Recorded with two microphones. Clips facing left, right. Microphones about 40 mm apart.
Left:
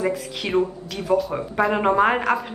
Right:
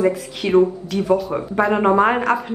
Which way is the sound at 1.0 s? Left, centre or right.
Centre.